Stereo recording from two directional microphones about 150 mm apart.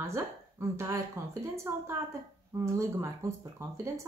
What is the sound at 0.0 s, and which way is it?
A woman's voice, 20° right (ahead or behind).